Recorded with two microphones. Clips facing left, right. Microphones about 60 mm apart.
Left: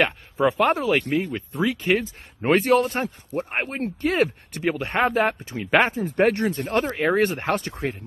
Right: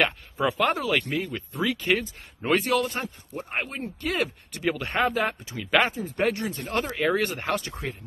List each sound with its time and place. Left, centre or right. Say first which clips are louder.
0.0 s speech: left 4 dB; centre
2.4 s speech: left 5 dB; left
4.6 s speech: left 3 dB; left